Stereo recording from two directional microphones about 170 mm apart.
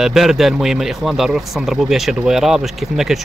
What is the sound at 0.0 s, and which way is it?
Speech, centre (ahead or behind).